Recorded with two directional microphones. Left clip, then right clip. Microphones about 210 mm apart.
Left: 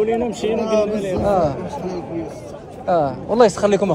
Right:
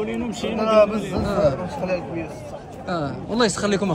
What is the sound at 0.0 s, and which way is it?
Speech, 5° right (ahead or behind).